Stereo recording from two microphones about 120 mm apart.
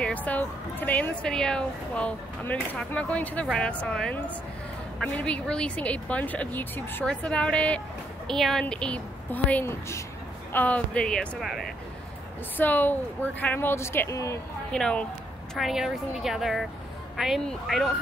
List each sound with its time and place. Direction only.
0.0 s speech: 15° left (ahead or behind)
12.5 s speech: 15° left (ahead or behind)
14.7 s a woman's voice: 5° left (ahead or behind)